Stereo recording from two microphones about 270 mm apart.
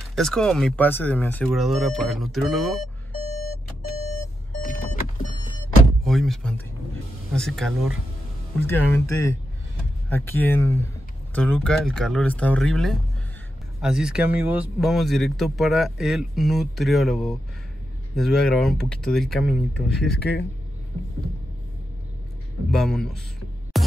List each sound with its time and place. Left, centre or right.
0.1 s speech: centre
3.2 s vehicle: left
4.0 s alarm clock: left
6.0 s speech: centre
22.7 s speech: centre